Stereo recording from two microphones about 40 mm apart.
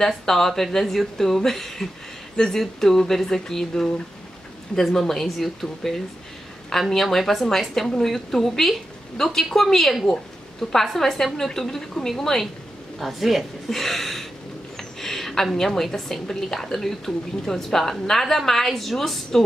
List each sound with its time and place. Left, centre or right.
0.0 s a woman's voice: centre
13.0 s a woman's voice: centre